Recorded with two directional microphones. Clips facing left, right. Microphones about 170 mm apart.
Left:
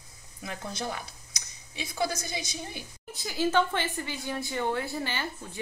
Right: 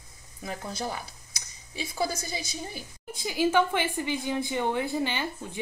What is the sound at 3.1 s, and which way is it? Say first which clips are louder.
A woman's voice: right 2 dB; 15° right (ahead or behind).